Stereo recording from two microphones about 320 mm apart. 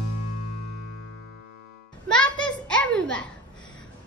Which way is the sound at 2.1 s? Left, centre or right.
Centre.